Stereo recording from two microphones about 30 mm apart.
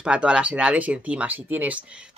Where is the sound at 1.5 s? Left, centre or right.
Right.